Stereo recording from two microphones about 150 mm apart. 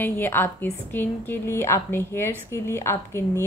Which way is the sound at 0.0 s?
15° left (ahead or behind).